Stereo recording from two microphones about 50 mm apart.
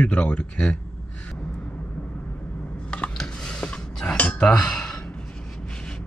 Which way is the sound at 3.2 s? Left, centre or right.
Centre.